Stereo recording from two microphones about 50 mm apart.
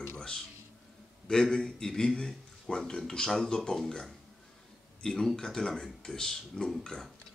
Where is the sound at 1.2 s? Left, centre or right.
Centre.